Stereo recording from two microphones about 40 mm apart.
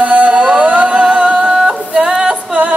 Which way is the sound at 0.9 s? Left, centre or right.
Right.